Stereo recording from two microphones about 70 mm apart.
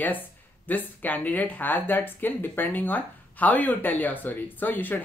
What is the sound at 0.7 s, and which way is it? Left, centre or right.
Speech, left.